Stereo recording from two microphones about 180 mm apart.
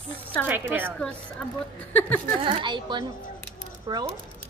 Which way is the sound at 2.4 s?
25° right (ahead or behind).